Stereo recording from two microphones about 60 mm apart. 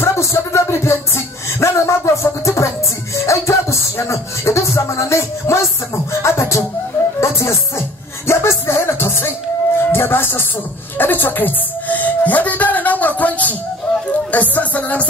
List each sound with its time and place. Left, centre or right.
0.0 s music: left
6.2 s beatboxing: left
7.2 s music: left